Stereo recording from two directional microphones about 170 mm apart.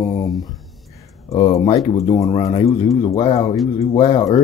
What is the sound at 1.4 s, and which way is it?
Speech, 25° left (ahead or behind).